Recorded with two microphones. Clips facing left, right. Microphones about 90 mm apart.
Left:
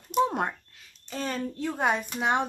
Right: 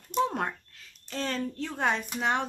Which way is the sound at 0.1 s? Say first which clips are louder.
Left 3 dB; 15° left (ahead or behind).